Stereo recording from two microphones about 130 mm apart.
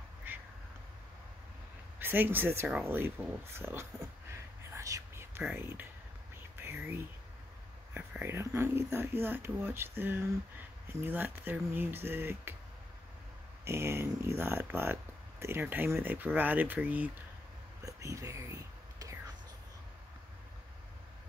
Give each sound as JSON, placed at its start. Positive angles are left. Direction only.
{"t": 2.0, "sound": "speech", "side_deg": -15}
{"t": 4.3, "sound": "whispering", "side_deg": -25}
{"t": 5.5, "sound": "speech", "side_deg": -15}
{"t": 6.5, "sound": "whispering", "side_deg": -20}
{"t": 7.9, "sound": "speech", "side_deg": -15}
{"t": 13.7, "sound": "speech", "side_deg": -20}
{"t": 17.8, "sound": "whispering", "side_deg": -25}